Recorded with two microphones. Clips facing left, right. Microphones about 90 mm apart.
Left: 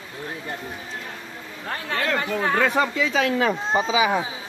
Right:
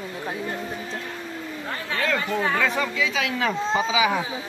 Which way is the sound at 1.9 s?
55° left (ahead or behind).